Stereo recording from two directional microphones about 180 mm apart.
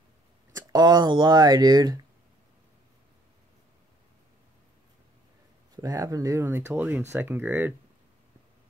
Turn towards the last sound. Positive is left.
turn(degrees=-10)  # may be behind; listen again after turning